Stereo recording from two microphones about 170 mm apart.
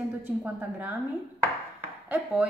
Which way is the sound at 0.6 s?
10° right (ahead or behind).